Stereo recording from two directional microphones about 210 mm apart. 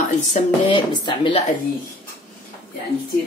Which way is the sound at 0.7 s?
25° left (ahead or behind).